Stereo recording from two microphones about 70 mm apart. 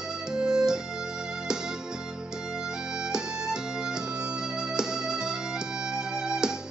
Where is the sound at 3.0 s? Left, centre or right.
Centre.